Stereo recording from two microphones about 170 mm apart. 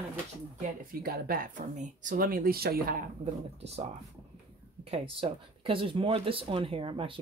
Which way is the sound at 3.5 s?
40° right (ahead or behind).